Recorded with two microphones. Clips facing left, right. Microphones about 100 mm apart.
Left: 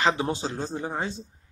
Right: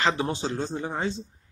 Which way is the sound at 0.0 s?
20° left (ahead or behind).